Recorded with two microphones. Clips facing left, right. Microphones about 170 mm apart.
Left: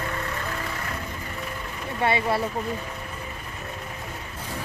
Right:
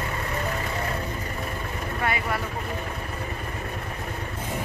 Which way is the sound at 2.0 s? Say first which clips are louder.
Left 5 dB; 30° left (ahead or behind).